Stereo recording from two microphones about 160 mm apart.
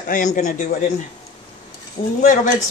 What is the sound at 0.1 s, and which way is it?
Speech, 55° left (ahead or behind).